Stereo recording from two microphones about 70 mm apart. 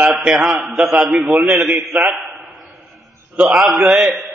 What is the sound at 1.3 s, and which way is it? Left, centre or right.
Speech, right.